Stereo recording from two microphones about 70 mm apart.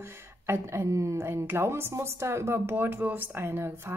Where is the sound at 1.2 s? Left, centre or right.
Right.